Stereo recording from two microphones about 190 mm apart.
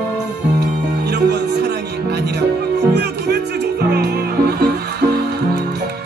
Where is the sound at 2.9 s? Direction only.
60° right (ahead or behind).